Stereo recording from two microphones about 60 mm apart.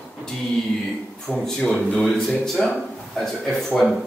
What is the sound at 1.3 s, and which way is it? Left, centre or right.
Speech, centre.